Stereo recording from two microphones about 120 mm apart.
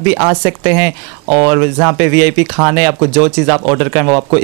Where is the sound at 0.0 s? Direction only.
15° right (ahead or behind).